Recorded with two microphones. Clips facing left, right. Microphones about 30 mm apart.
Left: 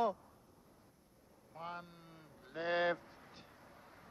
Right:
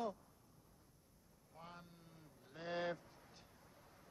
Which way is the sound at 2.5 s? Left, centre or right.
Left.